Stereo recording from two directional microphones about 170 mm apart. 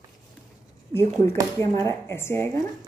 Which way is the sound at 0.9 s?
15° left (ahead or behind).